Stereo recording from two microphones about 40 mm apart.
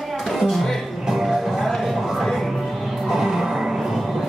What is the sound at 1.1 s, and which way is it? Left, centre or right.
Music, centre.